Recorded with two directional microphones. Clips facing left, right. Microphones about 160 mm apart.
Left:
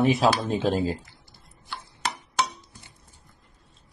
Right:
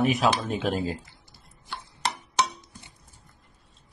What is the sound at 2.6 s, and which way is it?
Chopping, 20° right (ahead or behind).